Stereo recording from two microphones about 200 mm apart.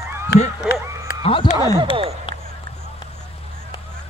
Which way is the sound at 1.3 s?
25° left (ahead or behind).